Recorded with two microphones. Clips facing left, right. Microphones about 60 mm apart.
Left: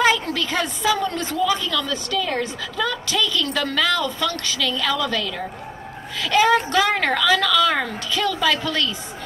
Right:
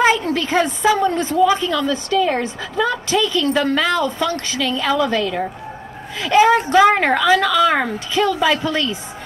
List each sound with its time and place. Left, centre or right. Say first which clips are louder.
0.0 s a woman's voice: right 3 dB; right